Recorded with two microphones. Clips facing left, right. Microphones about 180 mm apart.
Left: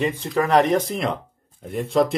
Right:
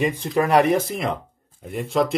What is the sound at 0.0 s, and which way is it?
Speech, 10° right (ahead or behind).